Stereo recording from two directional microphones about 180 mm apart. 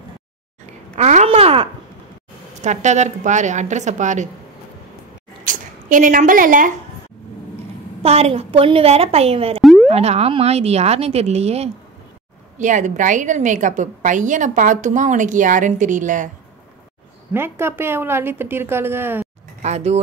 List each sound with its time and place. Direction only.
0.9 s a sound: 40° right (ahead or behind)
2.5 s speech: 40° right (ahead or behind)
5.4 s speech: 45° right (ahead or behind)
8.0 s speech: 35° right (ahead or behind)
9.6 s boing: centre (ahead or behind)
9.8 s a woman's voice: 35° right (ahead or behind)
17.3 s a woman's voice: 15° right (ahead or behind)
19.6 s speech: 40° right (ahead or behind)